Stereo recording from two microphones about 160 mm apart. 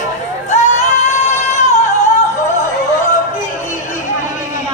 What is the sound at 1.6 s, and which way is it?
Music, 45° left (ahead or behind).